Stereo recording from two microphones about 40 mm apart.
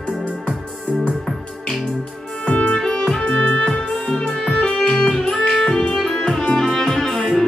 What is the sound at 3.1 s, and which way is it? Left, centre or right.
Music, centre.